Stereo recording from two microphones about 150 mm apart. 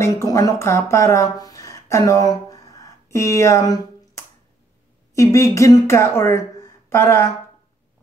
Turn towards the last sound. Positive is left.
turn(degrees=15)  # may be behind; listen again after turning